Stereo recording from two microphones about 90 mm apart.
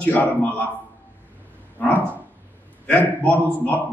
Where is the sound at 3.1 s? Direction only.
20° left (ahead or behind).